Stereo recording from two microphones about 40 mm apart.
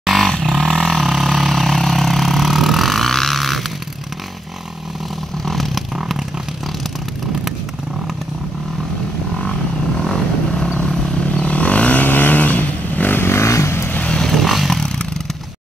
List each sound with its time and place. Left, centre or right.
0.0 s vehicle: centre
5.4 s vehicle: centre
5.9 s vehicle: centre
9.9 s vehicle: centre
11.2 s vehicle: left
12.0 s vehicle: left
13.1 s vehicle: left
14.2 s vehicle: centre
14.7 s vehicle: centre